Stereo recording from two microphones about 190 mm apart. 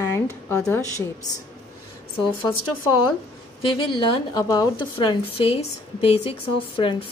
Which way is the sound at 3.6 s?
25° left (ahead or behind).